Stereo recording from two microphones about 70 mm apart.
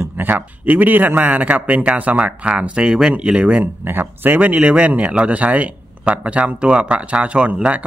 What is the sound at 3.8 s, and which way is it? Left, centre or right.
Speech, right.